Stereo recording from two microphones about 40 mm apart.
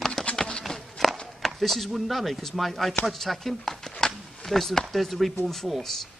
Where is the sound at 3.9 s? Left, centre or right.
Centre.